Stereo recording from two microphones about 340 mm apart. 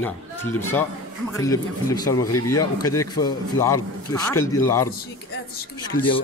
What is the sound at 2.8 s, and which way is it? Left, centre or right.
A man's voice, centre.